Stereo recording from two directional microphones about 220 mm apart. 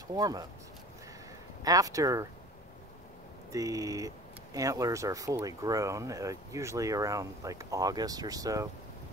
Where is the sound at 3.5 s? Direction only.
15° right (ahead or behind).